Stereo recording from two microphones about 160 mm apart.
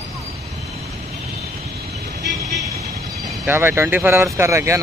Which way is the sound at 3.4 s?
15° right (ahead or behind).